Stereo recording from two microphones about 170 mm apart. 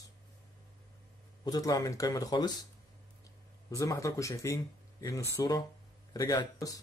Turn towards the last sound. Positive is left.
turn(degrees=20)  # may be behind; listen again after turning